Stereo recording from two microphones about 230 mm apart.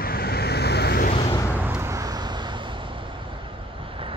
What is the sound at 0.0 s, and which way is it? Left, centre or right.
Vehicle, left.